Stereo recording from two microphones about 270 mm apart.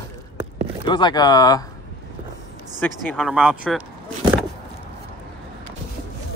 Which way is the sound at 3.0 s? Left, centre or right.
Centre.